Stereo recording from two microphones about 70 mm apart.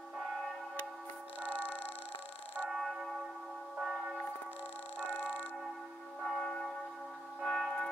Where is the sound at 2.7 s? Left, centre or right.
Centre.